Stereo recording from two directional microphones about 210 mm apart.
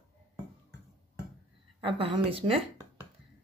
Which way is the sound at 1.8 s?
25° right (ahead or behind).